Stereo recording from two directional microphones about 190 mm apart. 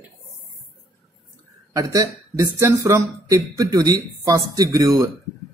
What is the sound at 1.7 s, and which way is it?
Speech, 15° right (ahead or behind).